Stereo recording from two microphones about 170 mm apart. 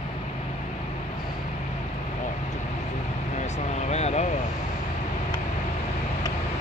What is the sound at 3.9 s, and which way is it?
Speech, 40° left (ahead or behind).